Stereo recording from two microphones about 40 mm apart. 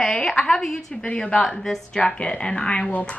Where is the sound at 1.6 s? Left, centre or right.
Centre.